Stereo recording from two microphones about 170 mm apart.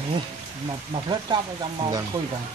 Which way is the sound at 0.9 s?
30° right (ahead or behind).